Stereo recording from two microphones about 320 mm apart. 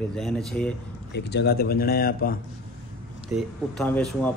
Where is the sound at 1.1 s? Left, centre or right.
Left.